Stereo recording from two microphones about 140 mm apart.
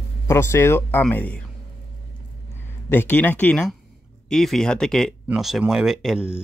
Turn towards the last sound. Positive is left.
turn(degrees=-5)  # may be behind; listen again after turning